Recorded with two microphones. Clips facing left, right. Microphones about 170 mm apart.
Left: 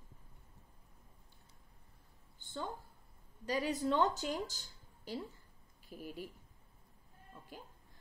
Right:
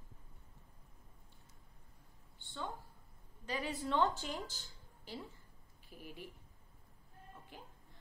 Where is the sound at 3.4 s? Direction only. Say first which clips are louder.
Left 5 dB; 40° left (ahead or behind).